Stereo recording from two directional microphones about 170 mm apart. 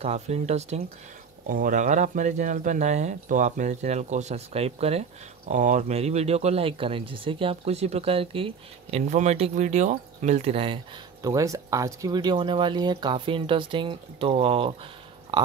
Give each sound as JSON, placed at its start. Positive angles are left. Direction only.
{"t": 0.0, "sound": "speech", "side_deg": -40}
{"t": 1.5, "sound": "speech", "side_deg": -50}
{"t": 11.2, "sound": "speech", "side_deg": -20}
{"t": 15.3, "sound": "a sound", "side_deg": -25}